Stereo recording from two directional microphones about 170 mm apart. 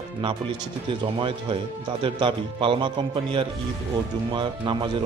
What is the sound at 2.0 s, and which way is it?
Speech, 30° right (ahead or behind).